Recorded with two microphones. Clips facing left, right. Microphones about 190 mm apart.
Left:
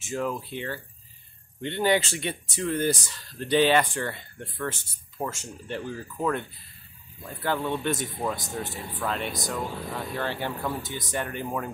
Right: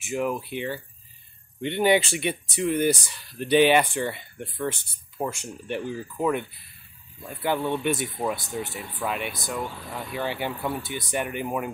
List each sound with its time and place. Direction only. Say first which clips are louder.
0.0 s speech: right 3 dB; 15° right (ahead or behind)